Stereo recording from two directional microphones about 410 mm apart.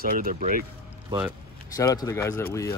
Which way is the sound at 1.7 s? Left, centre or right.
Centre.